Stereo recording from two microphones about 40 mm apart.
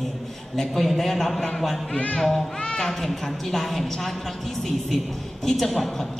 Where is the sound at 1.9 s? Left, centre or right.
Left.